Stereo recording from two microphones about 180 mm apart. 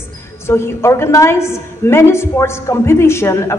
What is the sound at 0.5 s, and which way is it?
A woman's voice, 15° left (ahead or behind).